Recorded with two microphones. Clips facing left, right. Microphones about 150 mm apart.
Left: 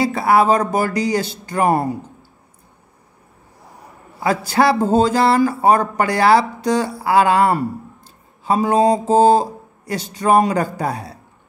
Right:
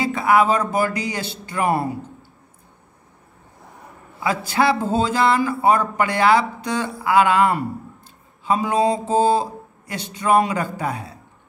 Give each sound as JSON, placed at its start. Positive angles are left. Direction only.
{"t": 0.0, "sound": "speech", "side_deg": 35}
{"t": 4.5, "sound": "speech", "side_deg": 40}